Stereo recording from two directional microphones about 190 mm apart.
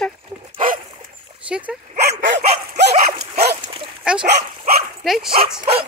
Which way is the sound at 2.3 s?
40° right (ahead or behind).